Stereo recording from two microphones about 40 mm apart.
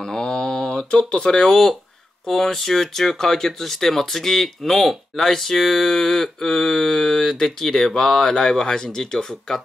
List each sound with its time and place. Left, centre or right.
0.0 s mantra: centre
1.1 s speech: centre
1.5 s speech: centre